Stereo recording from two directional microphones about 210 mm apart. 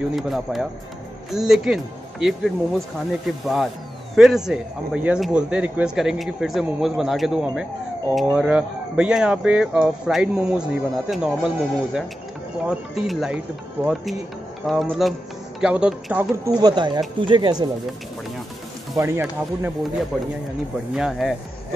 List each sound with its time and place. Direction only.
0.1 s speech: centre (ahead or behind)
16.5 s a woman's voice: 20° right (ahead or behind)
18.9 s speech: 10° right (ahead or behind)
20.9 s speech: centre (ahead or behind)